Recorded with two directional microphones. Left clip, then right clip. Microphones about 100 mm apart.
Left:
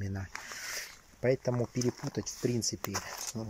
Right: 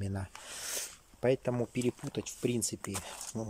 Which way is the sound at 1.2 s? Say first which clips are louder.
Even; 5° right (ahead or behind).